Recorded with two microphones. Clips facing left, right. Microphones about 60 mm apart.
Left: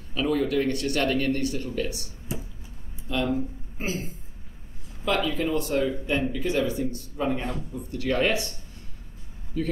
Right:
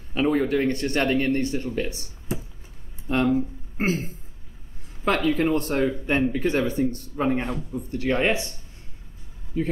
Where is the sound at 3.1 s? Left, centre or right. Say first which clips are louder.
Right 5 dB; right.